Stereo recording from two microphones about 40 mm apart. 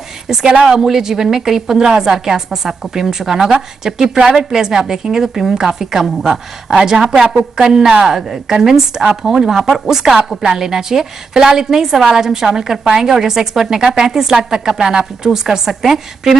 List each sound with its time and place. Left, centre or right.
0.3 s a woman's voice: centre